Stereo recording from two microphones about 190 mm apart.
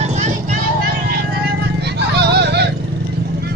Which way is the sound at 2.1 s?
60° right (ahead or behind).